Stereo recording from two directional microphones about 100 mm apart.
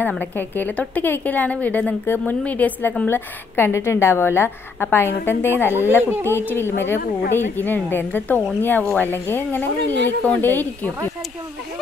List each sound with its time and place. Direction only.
0.2 s a woman's voice: 20° left (ahead or behind)
6.0 s speech: 20° right (ahead or behind)
6.3 s a woman's voice: 20° left (ahead or behind)